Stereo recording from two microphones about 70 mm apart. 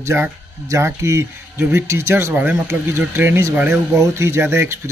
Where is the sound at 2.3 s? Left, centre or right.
Right.